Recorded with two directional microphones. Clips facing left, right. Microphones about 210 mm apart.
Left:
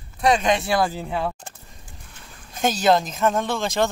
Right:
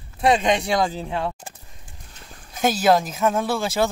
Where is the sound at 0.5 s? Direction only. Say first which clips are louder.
Even; 5° left (ahead or behind).